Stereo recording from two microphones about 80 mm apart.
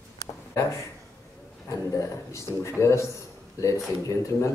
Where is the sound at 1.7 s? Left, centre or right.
Left.